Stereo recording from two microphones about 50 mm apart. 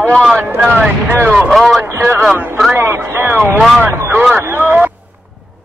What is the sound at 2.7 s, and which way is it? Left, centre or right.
Speech, right.